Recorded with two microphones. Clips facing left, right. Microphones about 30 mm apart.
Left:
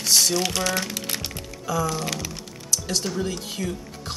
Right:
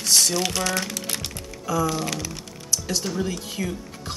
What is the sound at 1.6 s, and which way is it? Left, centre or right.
Speech, centre.